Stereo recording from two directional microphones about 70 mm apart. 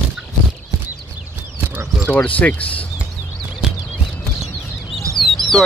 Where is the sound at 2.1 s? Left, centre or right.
Left.